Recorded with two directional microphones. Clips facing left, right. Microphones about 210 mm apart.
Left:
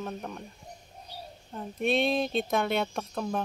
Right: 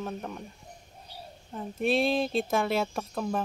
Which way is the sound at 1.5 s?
Centre (ahead or behind).